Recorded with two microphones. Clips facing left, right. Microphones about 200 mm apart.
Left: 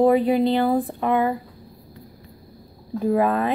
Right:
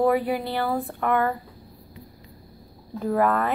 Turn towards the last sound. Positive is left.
turn(degrees=20)  # may be behind; listen again after turning